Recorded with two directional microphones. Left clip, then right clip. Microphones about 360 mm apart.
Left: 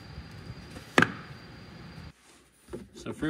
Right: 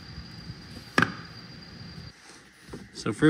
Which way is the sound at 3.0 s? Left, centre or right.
Centre.